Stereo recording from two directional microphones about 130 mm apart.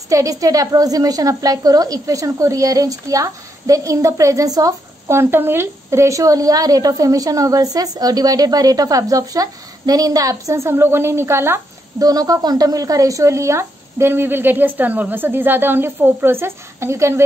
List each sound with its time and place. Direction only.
0.1 s a woman's voice: 25° right (ahead or behind)